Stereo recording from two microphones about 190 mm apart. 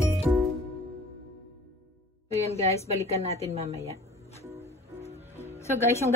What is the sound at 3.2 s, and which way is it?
Speech, 35° right (ahead or behind).